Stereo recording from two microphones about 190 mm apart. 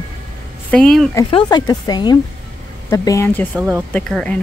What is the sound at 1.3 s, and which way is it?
Speech, 20° left (ahead or behind).